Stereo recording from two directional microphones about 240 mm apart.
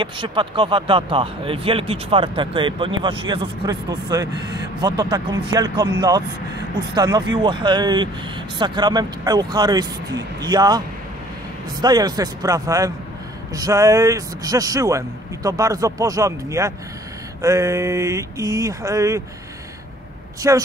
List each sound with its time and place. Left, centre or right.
0.0 s a man's voice: centre
11.8 s a man's voice: centre
20.4 s a man's voice: centre